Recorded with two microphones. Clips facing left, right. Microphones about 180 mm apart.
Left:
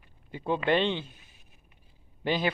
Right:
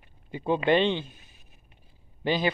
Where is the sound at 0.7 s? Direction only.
Centre (ahead or behind).